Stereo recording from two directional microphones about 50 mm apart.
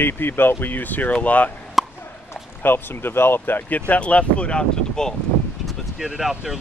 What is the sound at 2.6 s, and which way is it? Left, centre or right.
Speech, left.